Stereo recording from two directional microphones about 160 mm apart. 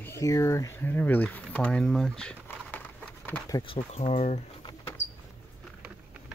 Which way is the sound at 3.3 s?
20° left (ahead or behind).